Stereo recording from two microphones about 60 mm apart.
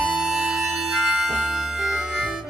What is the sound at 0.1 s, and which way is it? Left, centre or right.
Music, centre.